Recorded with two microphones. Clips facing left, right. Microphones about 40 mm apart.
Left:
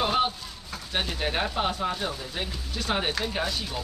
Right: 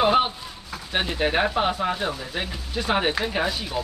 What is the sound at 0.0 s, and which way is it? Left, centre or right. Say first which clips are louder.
Speech: right 5 dB; centre.